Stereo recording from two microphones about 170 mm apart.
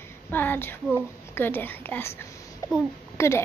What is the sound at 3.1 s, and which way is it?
Speech, 15° left (ahead or behind).